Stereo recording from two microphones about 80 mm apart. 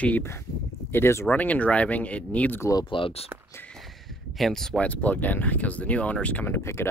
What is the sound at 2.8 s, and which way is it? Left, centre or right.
Speech, left.